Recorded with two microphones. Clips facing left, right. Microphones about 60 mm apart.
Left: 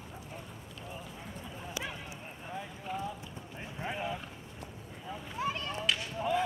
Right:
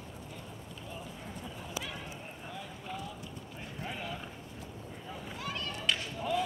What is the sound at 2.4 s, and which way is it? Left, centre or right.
Clip-clop, centre.